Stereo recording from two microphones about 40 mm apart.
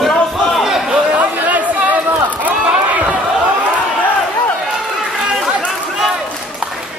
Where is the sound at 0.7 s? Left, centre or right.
Centre.